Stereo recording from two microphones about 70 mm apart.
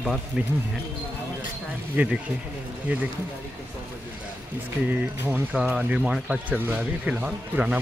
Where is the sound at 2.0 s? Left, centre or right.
Right.